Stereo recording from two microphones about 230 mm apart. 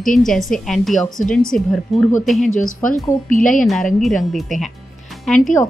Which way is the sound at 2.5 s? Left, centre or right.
Left.